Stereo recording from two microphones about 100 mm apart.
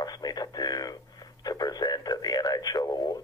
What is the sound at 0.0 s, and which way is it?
Radio, 40° left (ahead or behind).